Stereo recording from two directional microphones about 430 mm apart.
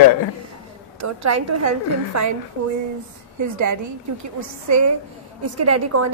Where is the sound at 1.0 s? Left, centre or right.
Right.